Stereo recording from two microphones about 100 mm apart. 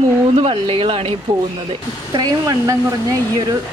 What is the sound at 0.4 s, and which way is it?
Speech, 70° right (ahead or behind).